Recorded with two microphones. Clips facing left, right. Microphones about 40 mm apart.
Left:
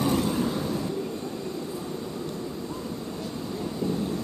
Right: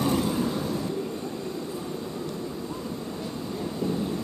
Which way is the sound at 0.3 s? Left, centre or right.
Centre.